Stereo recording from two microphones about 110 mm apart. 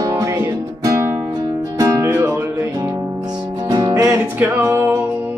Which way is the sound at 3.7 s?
40° right (ahead or behind).